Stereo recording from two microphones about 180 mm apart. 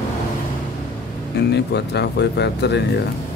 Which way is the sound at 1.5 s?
70° left (ahead or behind).